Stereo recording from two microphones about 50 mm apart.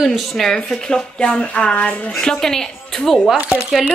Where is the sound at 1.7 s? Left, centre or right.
Left.